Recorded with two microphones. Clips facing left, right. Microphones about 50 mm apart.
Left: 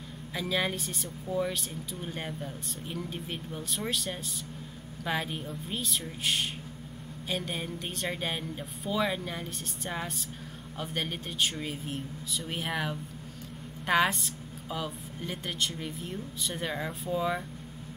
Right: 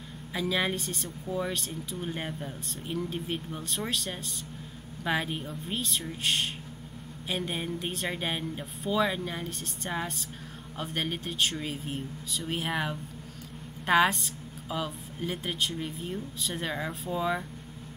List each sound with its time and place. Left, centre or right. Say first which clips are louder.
0.3 s a woman's voice: right 2 dB; centre
2.0 s a woman's voice: right 2 dB; centre